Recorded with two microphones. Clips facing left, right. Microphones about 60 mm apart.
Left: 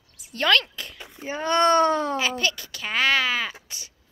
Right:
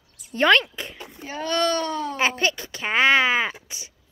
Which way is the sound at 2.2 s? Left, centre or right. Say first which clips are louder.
Right 3 dB; right.